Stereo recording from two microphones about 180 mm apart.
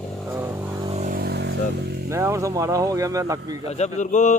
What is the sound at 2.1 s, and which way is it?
Speech, 15° right (ahead or behind).